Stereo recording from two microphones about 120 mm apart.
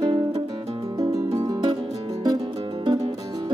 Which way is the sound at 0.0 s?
35° right (ahead or behind).